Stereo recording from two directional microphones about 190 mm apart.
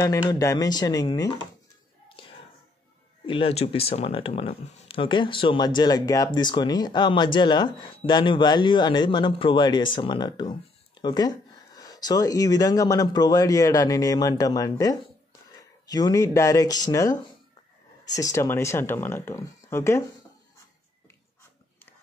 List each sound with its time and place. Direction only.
0.0 s speech: 15° left (ahead or behind)
3.3 s speech: 30° left (ahead or behind); by 20.1 s 15° left (ahead or behind)